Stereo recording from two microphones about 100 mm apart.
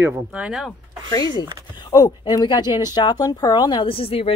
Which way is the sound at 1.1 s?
40° left (ahead or behind).